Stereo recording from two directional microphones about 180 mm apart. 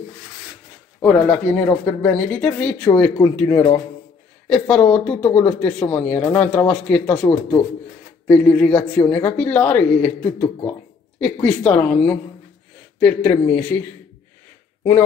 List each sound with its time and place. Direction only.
1.0 s speech: 5° left (ahead or behind)
4.5 s speech: 5° left (ahead or behind)
8.3 s speech: 10° left (ahead or behind)